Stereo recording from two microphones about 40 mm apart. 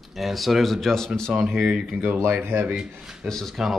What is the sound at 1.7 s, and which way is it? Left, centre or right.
Speech, right.